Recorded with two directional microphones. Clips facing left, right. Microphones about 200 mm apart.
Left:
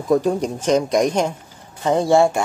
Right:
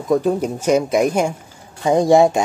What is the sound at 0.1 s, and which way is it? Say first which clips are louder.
Speech: right 1 dB; centre (ahead or behind).